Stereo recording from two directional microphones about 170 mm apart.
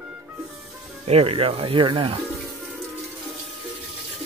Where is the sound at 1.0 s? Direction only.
35° right (ahead or behind).